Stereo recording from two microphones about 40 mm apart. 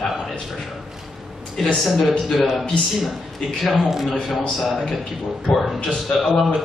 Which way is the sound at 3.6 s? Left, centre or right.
Centre.